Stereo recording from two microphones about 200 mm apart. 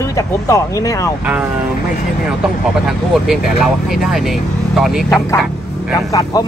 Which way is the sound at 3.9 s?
Centre (ahead or behind).